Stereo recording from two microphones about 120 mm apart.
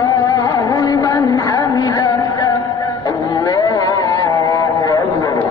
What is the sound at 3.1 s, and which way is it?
Music, 30° left (ahead or behind).